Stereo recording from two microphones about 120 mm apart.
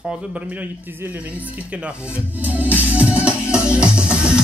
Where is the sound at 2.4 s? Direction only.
15° right (ahead or behind).